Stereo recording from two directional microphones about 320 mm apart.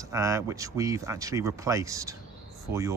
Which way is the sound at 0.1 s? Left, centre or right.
Centre.